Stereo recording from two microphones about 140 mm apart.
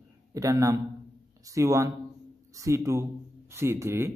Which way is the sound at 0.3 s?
25° right (ahead or behind).